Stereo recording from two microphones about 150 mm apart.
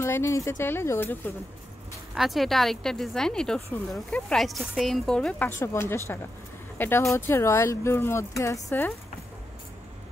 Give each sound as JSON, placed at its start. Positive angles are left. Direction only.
{"t": 0.0, "sound": "speech", "side_deg": 15}
{"t": 2.1, "sound": "a woman's voice", "side_deg": 0}
{"t": 5.6, "sound": "speech", "side_deg": 15}